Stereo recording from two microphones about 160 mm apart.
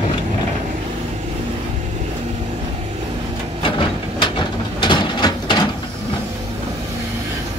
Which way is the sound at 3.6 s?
35° left (ahead or behind).